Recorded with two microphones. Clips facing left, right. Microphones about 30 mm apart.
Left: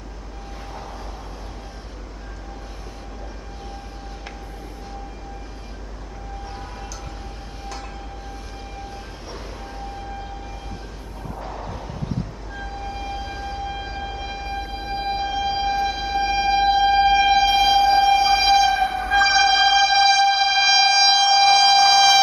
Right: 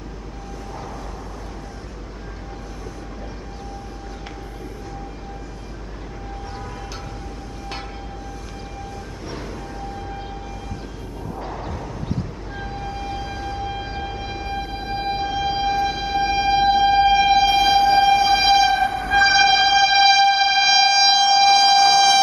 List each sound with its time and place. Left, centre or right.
11.3 s a sound: centre
12.5 s siren: centre
18.9 s train: centre